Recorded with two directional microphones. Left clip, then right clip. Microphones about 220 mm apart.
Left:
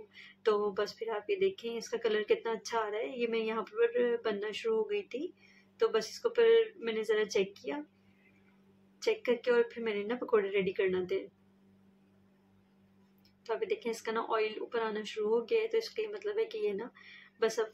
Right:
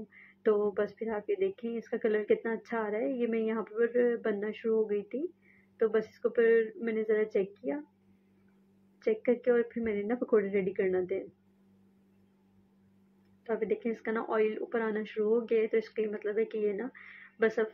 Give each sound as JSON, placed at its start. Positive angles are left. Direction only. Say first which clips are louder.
{"t": 0.4, "sound": "speech", "louder": "right 2 dB", "side_deg": -15}
{"t": 9.0, "sound": "speech", "louder": "right 2 dB", "side_deg": -15}
{"t": 13.5, "sound": "speech", "louder": "right 2 dB", "side_deg": -15}